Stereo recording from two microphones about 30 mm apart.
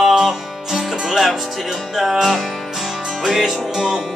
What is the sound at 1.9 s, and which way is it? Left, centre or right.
Music, centre.